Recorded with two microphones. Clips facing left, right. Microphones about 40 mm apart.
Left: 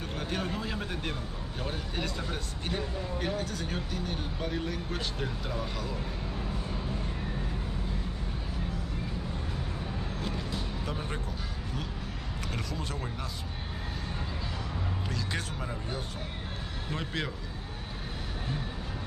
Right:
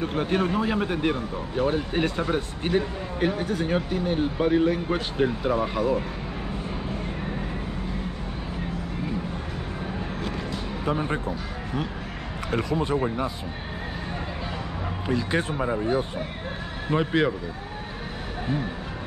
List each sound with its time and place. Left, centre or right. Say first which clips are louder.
0.0 s speech: right 10 dB; right
10.9 s speech: right 10 dB; right
15.0 s speech: right 14 dB; right